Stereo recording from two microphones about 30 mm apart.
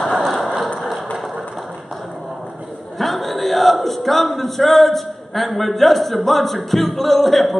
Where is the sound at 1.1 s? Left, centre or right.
Centre.